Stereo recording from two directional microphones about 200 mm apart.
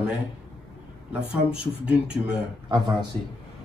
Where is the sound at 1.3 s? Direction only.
5° right (ahead or behind).